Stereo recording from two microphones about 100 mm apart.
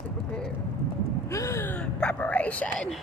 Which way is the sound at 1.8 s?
10° left (ahead or behind).